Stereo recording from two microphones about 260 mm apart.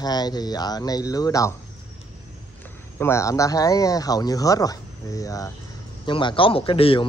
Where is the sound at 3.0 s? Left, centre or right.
Centre.